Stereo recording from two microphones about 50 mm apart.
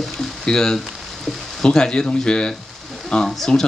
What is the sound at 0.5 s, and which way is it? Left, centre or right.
Speech, centre.